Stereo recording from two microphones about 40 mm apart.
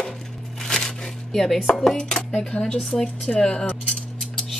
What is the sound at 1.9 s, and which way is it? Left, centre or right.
Speech, left.